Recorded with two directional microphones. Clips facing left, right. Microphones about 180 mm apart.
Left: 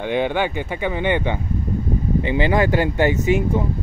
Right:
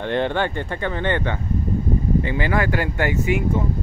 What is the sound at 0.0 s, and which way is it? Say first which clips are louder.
Speech: left 1 dB; 5° left (ahead or behind).